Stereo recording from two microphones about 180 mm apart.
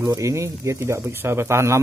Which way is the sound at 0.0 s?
15° right (ahead or behind).